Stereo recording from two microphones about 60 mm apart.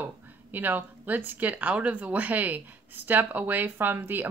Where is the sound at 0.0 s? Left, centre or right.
Right.